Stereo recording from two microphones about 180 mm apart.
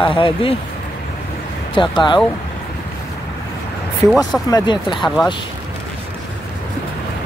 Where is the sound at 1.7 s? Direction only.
25° left (ahead or behind).